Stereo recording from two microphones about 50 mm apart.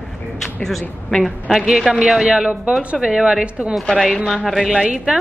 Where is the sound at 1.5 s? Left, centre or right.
Centre.